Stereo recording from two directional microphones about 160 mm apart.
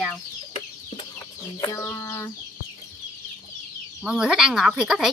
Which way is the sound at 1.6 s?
20° left (ahead or behind).